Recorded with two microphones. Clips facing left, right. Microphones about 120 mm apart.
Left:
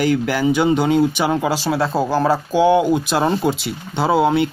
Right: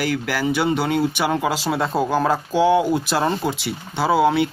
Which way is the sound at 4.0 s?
20° left (ahead or behind).